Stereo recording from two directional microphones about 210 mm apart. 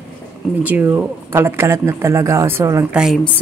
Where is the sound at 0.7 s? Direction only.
10° right (ahead or behind).